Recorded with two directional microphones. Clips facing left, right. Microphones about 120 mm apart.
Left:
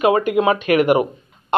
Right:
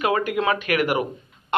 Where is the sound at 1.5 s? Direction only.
25° left (ahead or behind).